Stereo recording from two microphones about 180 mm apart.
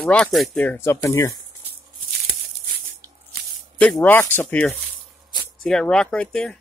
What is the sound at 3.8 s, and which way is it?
Speech, 5° left (ahead or behind).